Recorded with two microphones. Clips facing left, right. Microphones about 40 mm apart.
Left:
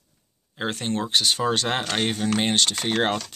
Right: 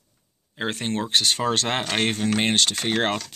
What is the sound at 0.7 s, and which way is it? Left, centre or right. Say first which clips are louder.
Speech: even; right.